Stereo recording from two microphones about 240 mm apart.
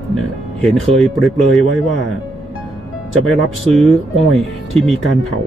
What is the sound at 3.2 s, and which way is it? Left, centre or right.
Speech, centre.